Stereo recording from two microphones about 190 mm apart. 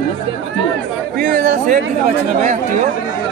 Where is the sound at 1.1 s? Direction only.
45° right (ahead or behind).